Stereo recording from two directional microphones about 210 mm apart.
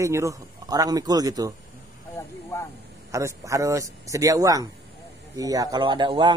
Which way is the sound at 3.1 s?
15° right (ahead or behind).